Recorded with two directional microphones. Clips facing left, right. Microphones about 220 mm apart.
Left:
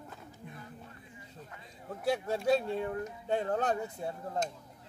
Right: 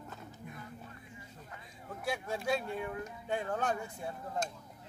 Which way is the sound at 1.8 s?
35° left (ahead or behind).